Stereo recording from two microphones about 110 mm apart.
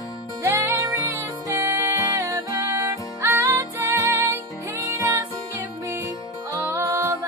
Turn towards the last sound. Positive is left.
turn(degrees=-30)  # may be behind; listen again after turning